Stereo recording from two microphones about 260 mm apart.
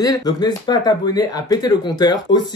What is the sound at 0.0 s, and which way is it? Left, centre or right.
Speech, centre.